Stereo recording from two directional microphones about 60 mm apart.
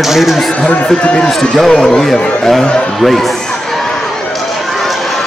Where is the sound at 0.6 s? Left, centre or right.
Left.